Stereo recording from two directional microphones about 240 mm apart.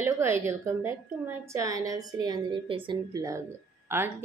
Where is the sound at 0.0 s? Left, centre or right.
Centre.